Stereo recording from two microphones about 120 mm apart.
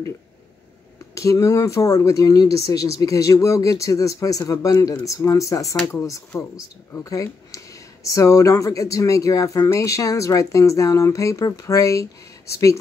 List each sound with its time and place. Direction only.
1.1 s speech: 25° left (ahead or behind)